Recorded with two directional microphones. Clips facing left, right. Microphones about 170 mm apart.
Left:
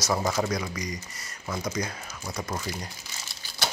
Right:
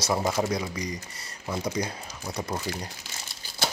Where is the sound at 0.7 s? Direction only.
30° right (ahead or behind).